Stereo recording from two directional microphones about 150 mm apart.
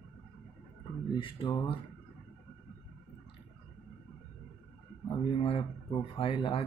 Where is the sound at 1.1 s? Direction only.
35° left (ahead or behind).